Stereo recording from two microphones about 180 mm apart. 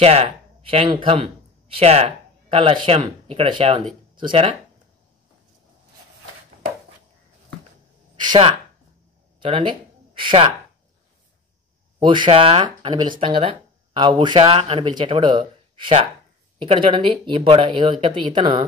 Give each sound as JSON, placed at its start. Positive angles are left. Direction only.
{"t": 0.0, "sound": "speech", "side_deg": -35}
{"t": 8.2, "sound": "speech", "side_deg": -25}
{"t": 12.0, "sound": "speech", "side_deg": -25}